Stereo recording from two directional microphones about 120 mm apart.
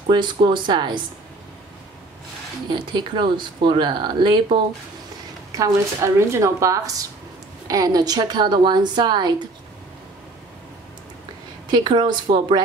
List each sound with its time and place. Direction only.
0.0 s speech: 40° right (ahead or behind)
2.7 s speech: 40° right (ahead or behind)
5.5 s speech: 30° right (ahead or behind)
11.7 s speech: 40° right (ahead or behind)